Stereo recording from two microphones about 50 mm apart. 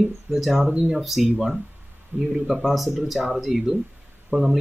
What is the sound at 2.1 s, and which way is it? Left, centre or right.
Speech, right.